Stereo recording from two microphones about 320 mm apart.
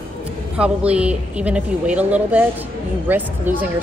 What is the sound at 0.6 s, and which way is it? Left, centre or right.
Speech, centre.